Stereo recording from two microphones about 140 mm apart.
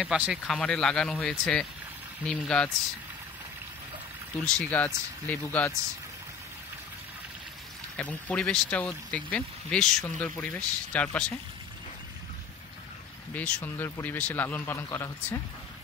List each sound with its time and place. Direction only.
0.0 s speech: 5° right (ahead or behind)
0.5 s speech: 5° left (ahead or behind)
4.6 s speech: 10° left (ahead or behind)
8.0 s speech: 10° left (ahead or behind)
13.3 s speech: 10° left (ahead or behind)
13.8 s speech: 20° left (ahead or behind)